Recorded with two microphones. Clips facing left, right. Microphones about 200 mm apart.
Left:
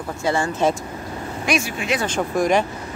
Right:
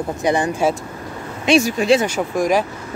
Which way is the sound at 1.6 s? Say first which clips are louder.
Right 9 dB; 35° right (ahead or behind).